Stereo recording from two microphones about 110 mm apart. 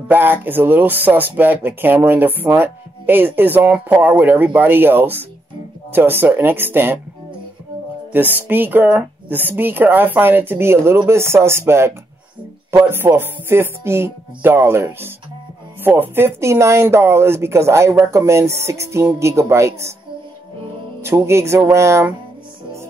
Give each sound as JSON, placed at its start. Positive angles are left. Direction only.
{"t": 0.1, "sound": "speech", "side_deg": -20}
{"t": 8.1, "sound": "speech", "side_deg": -15}
{"t": 21.0, "sound": "speech", "side_deg": -25}